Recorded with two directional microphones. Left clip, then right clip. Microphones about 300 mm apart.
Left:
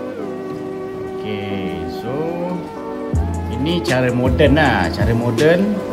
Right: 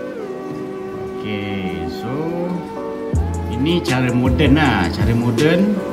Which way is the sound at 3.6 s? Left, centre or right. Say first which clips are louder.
Left 1 dB; centre.